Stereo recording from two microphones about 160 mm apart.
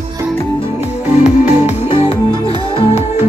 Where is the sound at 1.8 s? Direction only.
35° left (ahead or behind).